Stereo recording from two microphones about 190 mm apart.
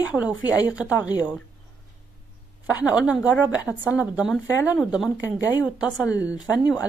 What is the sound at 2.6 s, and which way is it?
A woman's voice, 5° right (ahead or behind).